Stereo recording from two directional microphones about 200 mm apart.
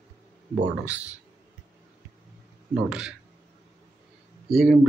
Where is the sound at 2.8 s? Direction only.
5° right (ahead or behind).